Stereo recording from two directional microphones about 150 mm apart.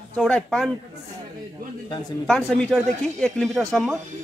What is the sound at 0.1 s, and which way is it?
Speech, 5° left (ahead or behind).